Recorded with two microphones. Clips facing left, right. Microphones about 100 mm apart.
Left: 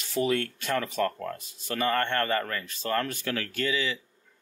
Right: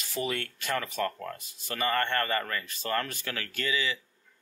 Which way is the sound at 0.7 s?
20° left (ahead or behind).